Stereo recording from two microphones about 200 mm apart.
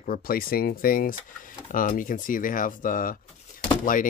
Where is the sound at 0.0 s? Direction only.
45° left (ahead or behind).